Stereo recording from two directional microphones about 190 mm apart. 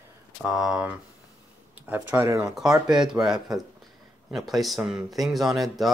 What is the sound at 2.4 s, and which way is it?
Speech, 5° right (ahead or behind).